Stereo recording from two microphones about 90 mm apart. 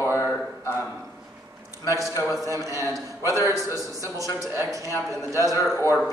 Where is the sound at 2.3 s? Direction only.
40° right (ahead or behind).